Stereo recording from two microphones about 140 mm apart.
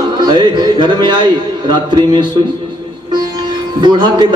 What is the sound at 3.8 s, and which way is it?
Speech, 35° right (ahead or behind).